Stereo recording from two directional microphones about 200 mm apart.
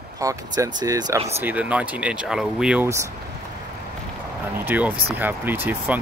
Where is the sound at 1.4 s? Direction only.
5° right (ahead or behind).